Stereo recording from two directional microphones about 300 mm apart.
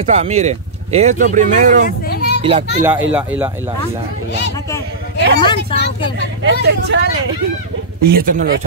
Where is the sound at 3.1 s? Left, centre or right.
Centre.